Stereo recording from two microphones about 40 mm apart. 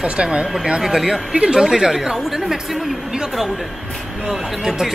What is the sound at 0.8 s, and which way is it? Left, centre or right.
Speech, centre.